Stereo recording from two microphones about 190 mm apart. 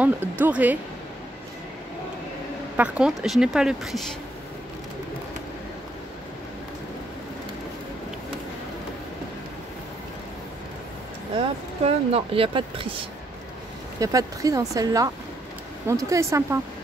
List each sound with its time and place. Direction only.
0.0 s speech: 10° right (ahead or behind)
2.8 s speech: 5° right (ahead or behind)
11.3 s speech: 30° right (ahead or behind); by 16.5 s 15° right (ahead or behind)